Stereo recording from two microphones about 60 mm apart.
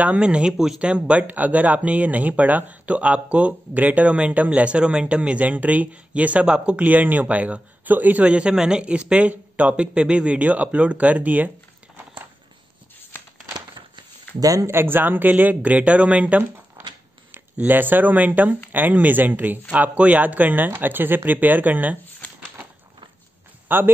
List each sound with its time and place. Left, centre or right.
0.0 s speech: centre
0.7 s speech: centre
6.8 s speech: right
14.4 s speech: right
14.7 s speech: right
17.6 s speech: right
23.7 s speech: right